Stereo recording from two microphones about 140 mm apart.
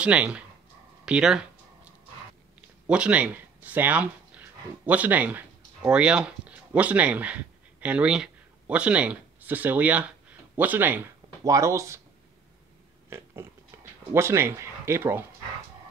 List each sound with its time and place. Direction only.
0.0 s speech: 10° right (ahead or behind)
2.9 s speech: 10° right (ahead or behind)
14.1 s speech: 20° right (ahead or behind)